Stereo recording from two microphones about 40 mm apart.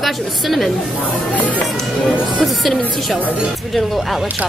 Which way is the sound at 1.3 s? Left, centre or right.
Left.